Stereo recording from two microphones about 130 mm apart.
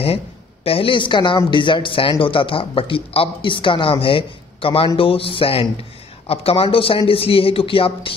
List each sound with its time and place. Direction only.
0.7 s a man's voice: 45° left (ahead or behind)